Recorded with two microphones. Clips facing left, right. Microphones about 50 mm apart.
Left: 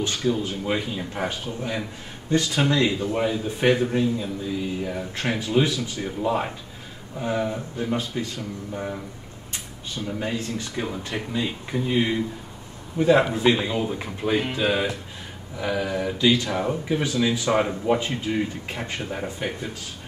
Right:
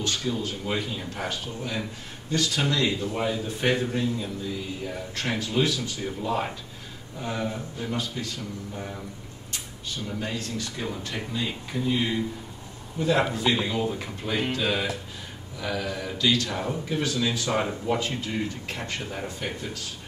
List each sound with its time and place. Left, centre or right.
0.0 s speech: centre
10.0 s speech: centre